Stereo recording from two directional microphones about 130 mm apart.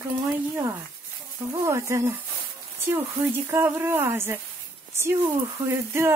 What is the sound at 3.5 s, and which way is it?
Speech, 15° right (ahead or behind).